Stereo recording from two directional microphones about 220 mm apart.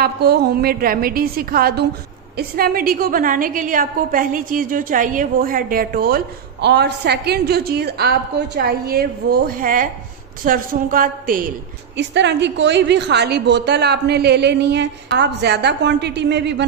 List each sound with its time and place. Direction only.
0.0 s a woman's voice: 45° right (ahead or behind)
12.0 s a woman's voice: 55° right (ahead or behind)